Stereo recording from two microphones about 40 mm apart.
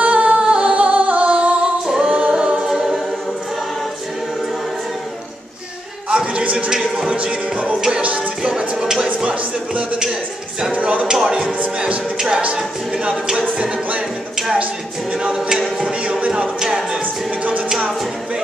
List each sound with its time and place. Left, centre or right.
0.0 s singing: right
0.4 s music: right
1.6 s a capella: centre
2.6 s choir: centre
6.0 s a sound: right
7.4 s music: right
8.4 s music: centre
9.2 s a sound: right
11.1 s music: centre
15.2 s a capella: centre
16.0 s music: right
16.5 s music: centre